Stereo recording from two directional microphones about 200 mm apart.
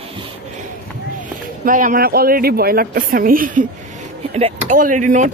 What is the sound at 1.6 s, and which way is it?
Speech, 40° right (ahead or behind).